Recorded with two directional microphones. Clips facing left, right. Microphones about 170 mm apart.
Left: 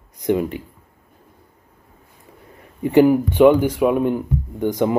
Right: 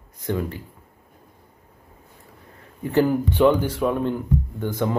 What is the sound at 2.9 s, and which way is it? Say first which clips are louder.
Speech: left 6 dB; 15° left (ahead or behind).